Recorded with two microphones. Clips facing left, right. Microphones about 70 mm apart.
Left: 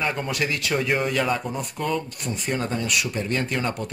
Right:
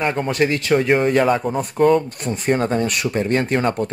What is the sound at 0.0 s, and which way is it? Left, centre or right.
Speech, right.